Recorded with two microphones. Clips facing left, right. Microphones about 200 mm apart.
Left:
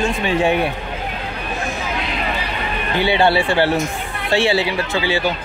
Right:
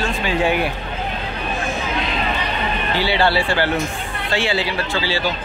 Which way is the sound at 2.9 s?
20° left (ahead or behind).